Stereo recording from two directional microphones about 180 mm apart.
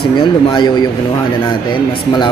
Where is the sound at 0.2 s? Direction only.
30° left (ahead or behind).